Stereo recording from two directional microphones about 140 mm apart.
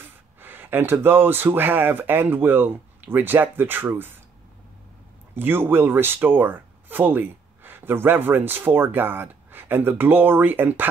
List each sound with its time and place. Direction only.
0.0 s speech: 15° right (ahead or behind)
5.3 s speech: 15° right (ahead or behind)